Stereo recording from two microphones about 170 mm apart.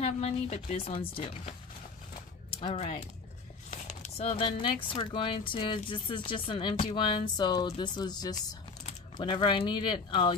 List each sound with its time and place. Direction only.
0.0 s speech: 40° left (ahead or behind)
2.6 s speech: 40° left (ahead or behind)
3.7 s a sound: 45° left (ahead or behind)
4.8 s speech: 30° left (ahead or behind)